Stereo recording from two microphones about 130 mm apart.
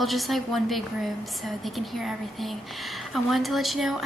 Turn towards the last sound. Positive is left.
turn(degrees=-5)  # may be behind; listen again after turning